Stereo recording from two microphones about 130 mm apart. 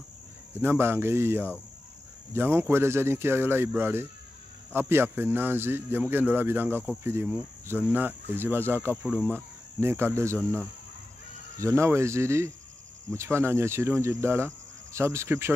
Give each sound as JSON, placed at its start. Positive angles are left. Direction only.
{"t": 0.6, "sound": "speech", "side_deg": -15}
{"t": 8.9, "sound": "speech", "side_deg": -5}